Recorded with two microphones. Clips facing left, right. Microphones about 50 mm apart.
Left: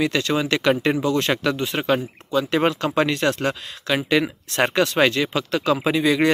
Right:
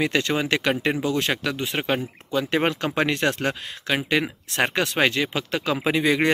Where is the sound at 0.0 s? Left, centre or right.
Right; by 1.6 s centre.